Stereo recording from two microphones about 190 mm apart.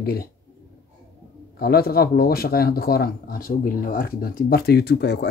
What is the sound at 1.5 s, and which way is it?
Speech, 55° left (ahead or behind).